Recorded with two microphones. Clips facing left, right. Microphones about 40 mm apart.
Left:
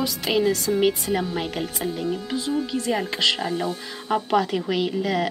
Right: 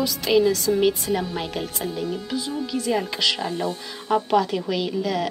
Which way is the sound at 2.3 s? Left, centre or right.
Left.